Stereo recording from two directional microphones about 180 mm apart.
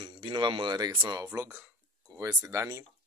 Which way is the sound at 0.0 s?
30° right (ahead or behind).